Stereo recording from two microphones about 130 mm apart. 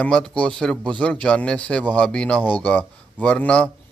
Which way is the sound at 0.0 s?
5° left (ahead or behind).